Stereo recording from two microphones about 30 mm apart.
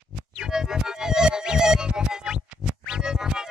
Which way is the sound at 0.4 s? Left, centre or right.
Centre.